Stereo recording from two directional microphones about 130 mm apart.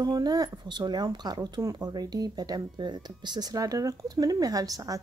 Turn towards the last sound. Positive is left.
turn(degrees=-25)  # may be behind; listen again after turning